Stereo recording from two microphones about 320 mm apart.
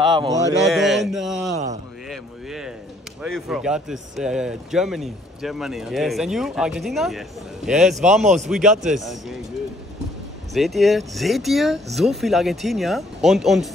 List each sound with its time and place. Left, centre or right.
0.0 s speech: centre
0.7 s a sound: centre
1.5 s speech: right
2.0 s a sound: centre
3.2 s speech: centre
10.5 s speech: centre